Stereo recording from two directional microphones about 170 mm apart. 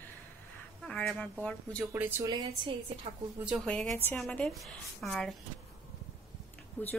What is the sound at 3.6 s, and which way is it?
A woman's voice, 5° left (ahead or behind).